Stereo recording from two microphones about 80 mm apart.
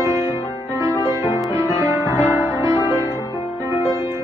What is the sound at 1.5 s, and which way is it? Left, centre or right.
Music, right.